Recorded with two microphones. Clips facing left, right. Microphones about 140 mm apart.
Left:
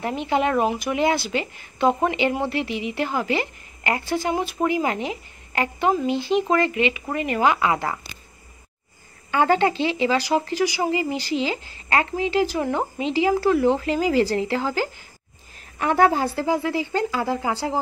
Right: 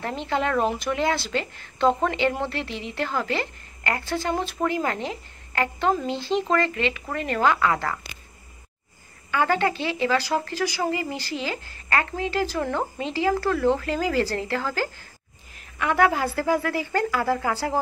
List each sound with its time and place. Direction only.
0.0 s speech: 15° left (ahead or behind)
9.3 s speech: 25° left (ahead or behind)
15.8 s speech: 30° left (ahead or behind)